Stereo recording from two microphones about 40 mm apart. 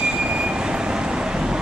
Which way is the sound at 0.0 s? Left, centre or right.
Right.